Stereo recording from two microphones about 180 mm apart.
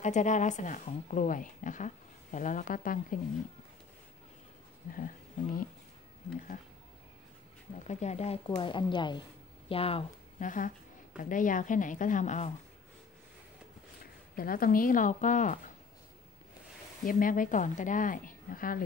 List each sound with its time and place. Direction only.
0.0 s speech: 40° left (ahead or behind)
4.9 s speech: 50° left (ahead or behind)
7.8 s speech: 40° left (ahead or behind)
8.5 s a woman's voice: 25° left (ahead or behind)
10.4 s speech: 45° left (ahead or behind)
14.3 s speech: 50° left (ahead or behind)
17.0 s speech: 50° left (ahead or behind)